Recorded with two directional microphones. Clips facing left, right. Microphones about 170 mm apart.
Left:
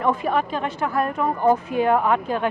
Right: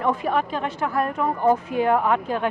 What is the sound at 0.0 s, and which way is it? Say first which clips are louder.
A woman's voice: left 1 dB; 15° left (ahead or behind).